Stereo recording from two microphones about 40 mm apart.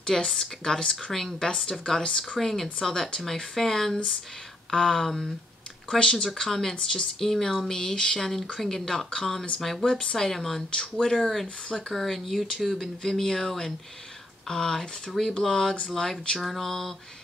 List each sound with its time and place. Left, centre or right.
0.3 s speech: centre
2.2 s speech: centre
5.9 s speech: centre
6.7 s speech: left
7.2 s speech: centre
8.2 s speech: centre
10.8 s speech: centre